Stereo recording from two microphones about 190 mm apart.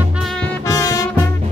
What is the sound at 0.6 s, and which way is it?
Music, 15° left (ahead or behind).